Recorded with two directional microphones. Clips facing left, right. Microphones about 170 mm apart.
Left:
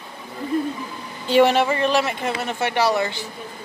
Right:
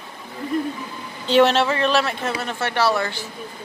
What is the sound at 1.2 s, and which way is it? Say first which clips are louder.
Speech: even; 10° left (ahead or behind).